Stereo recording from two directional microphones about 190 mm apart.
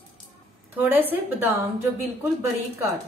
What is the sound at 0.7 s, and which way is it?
A woman's voice, 10° right (ahead or behind).